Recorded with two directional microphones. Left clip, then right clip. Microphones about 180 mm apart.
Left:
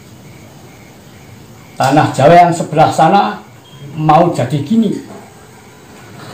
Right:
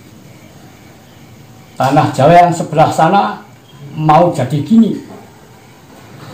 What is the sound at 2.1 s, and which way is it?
Speech, 15° right (ahead or behind).